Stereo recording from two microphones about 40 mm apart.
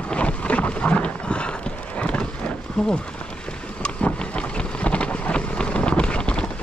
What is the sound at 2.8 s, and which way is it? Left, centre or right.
Speech, centre.